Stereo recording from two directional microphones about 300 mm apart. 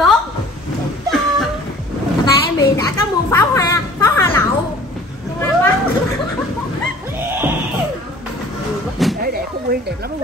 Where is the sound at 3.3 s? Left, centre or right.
Centre.